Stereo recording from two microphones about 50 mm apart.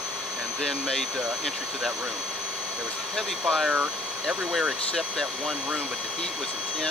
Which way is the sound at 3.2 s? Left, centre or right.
Centre.